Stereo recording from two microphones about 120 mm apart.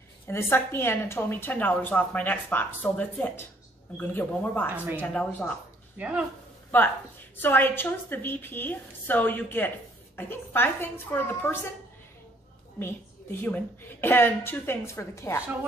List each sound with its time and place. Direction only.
0.3 s a woman's voice: 20° left (ahead or behind)
4.6 s speech: 15° right (ahead or behind)
5.0 s a woman's voice: 10° left (ahead or behind)
5.9 s speech: 10° right (ahead or behind)
6.7 s a woman's voice: 15° left (ahead or behind)
12.7 s a woman's voice: 20° left (ahead or behind)